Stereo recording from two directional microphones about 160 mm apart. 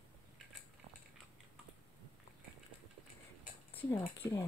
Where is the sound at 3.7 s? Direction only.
15° left (ahead or behind).